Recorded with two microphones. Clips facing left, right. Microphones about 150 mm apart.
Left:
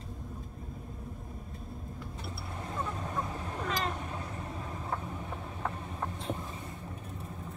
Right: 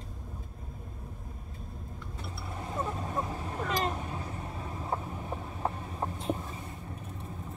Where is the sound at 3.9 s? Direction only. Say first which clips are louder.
Right 1 dB; centre (ahead or behind).